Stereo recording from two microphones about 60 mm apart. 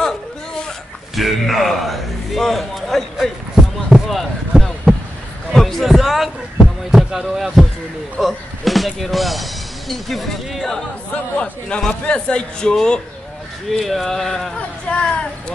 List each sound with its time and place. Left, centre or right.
1.1 s a man's voice: centre
3.2 s basketball bounce: centre
4.1 s a sound: centre
5.5 s speech: centre
11.3 s a man's voice: centre
14.9 s speech: centre